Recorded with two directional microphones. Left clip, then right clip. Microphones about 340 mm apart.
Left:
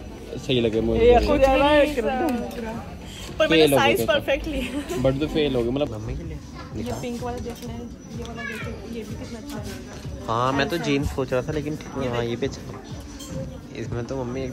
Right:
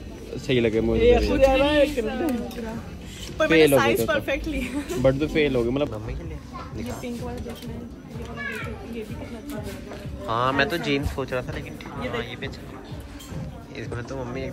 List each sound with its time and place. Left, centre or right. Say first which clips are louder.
0.6 s a woman's voice: left 1 dB; centre
10.2 s speech: even; centre
13.7 s speech: left 3 dB; centre